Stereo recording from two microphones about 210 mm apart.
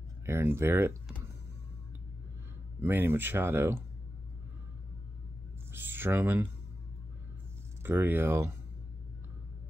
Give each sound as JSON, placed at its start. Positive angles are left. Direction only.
{"t": 0.2, "sound": "speech", "side_deg": -10}
{"t": 2.8, "sound": "speech", "side_deg": -10}
{"t": 5.7, "sound": "a sound", "side_deg": -10}
{"t": 7.8, "sound": "speech", "side_deg": -10}